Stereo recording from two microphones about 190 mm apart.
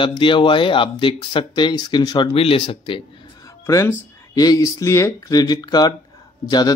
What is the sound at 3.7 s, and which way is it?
Speech, 15° left (ahead or behind).